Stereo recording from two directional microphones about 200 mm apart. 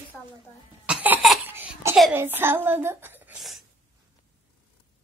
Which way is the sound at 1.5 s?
10° right (ahead or behind).